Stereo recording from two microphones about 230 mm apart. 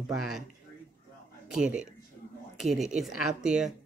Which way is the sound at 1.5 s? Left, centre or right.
Centre.